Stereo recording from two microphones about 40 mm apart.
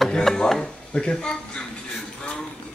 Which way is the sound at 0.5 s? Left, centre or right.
Centre.